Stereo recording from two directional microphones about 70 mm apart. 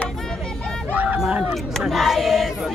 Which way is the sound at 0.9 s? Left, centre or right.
Right.